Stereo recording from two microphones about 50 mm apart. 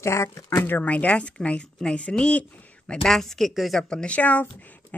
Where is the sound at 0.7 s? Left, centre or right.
Left.